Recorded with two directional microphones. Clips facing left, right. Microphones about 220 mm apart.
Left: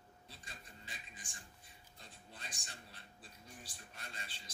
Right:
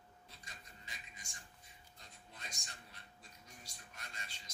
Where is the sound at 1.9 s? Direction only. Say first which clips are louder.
Left 3 dB; 30° left (ahead or behind).